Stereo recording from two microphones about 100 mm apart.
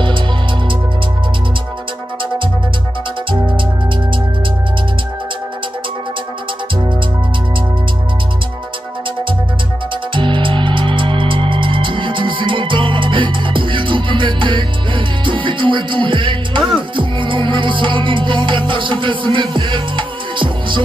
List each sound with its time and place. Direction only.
3.3 s music: 55° right (ahead or behind)
10.1 s music: 55° right (ahead or behind)